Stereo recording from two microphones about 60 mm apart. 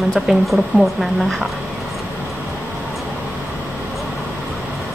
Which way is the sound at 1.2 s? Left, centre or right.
Centre.